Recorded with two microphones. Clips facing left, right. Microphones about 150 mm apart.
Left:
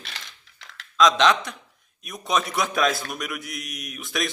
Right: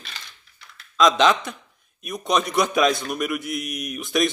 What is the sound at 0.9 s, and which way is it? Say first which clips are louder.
A man's voice: right 1 dB; centre (ahead or behind).